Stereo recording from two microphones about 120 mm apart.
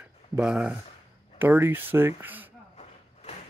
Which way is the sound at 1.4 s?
20° right (ahead or behind).